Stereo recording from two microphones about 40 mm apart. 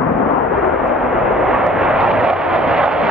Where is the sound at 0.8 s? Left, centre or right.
Centre.